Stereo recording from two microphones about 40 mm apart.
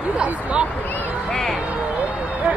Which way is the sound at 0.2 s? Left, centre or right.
Right.